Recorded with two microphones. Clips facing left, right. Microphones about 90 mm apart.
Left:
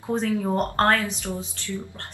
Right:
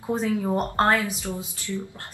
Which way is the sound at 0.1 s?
5° right (ahead or behind).